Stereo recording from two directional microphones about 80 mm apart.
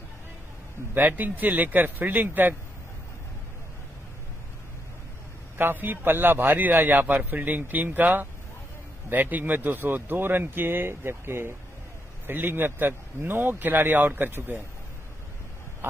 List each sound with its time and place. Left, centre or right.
0.9 s a man's voice: right
5.6 s a man's voice: right
15.8 s a sound: right